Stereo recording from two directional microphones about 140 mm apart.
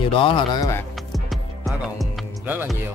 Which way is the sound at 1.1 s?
Centre (ahead or behind).